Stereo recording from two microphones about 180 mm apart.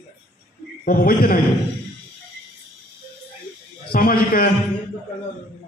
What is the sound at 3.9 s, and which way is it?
Speech, 55° left (ahead or behind).